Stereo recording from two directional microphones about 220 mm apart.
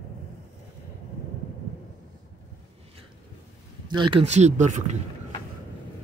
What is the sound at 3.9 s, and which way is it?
Speech, 20° right (ahead or behind).